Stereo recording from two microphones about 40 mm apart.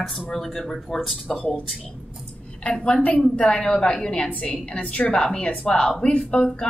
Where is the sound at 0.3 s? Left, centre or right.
Centre.